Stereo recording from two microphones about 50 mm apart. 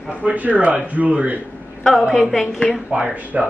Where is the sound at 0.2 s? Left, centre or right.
Right.